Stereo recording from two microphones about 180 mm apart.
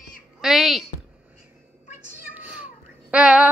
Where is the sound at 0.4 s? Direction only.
Centre (ahead or behind).